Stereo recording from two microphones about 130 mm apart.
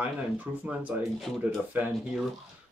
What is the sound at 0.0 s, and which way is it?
Speech, 10° right (ahead or behind).